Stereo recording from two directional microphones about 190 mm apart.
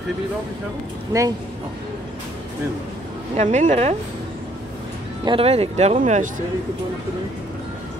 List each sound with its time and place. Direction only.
1.1 s speech: 15° right (ahead or behind)
3.3 s speech: 40° right (ahead or behind)
5.2 s speech: 30° right (ahead or behind)